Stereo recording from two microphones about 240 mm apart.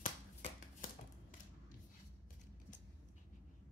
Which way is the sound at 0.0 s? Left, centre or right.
Left.